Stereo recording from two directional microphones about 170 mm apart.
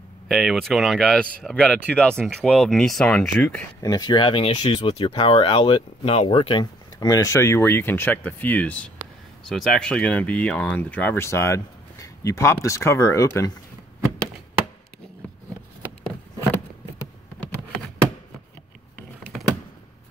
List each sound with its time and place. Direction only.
0.3 s speech: centre (ahead or behind)
3.8 s speech: 25° left (ahead or behind)